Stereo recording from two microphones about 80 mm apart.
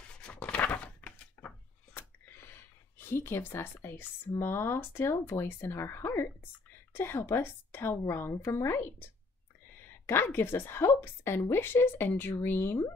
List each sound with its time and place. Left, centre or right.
0.2 s a sound: centre
4.4 s a woman's voice: left
10.0 s a woman's voice: left